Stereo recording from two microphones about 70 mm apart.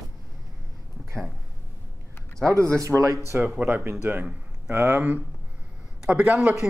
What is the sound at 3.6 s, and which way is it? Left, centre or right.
Speech, right.